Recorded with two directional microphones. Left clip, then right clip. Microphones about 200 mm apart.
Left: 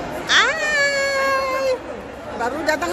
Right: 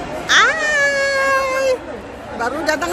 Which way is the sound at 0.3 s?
Centre (ahead or behind).